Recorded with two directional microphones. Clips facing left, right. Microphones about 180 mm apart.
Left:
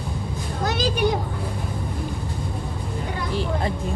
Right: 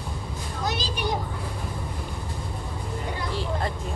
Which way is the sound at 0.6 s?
50° left (ahead or behind).